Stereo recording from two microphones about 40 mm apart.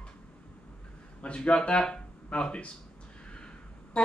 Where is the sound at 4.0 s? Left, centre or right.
Left.